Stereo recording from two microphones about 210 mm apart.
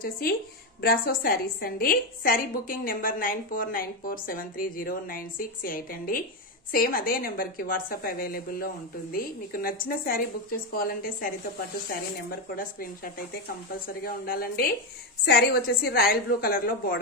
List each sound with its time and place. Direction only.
0.7 s a woman's voice: 45° left (ahead or behind)